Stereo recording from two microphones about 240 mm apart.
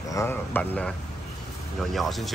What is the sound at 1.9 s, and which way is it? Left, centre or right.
Speech, centre.